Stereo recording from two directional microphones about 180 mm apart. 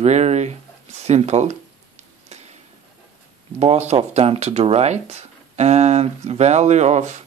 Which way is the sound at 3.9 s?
35° right (ahead or behind).